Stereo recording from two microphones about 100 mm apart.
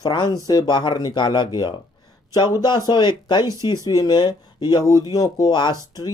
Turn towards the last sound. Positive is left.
turn(degrees=45)  # may be behind; listen again after turning